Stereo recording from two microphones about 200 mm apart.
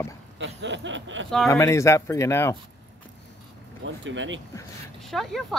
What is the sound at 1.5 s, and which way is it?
Speech, 15° left (ahead or behind).